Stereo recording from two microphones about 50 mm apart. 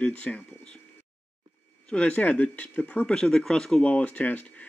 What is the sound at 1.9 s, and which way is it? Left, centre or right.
Speech, left.